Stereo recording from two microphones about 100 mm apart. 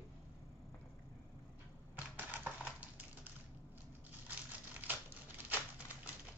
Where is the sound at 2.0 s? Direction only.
15° right (ahead or behind).